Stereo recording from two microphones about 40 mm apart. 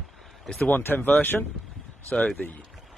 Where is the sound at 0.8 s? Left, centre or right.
Left.